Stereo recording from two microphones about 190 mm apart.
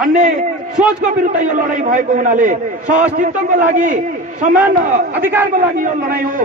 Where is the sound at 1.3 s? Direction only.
40° right (ahead or behind).